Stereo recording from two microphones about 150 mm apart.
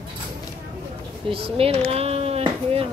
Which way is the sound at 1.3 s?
40° right (ahead or behind).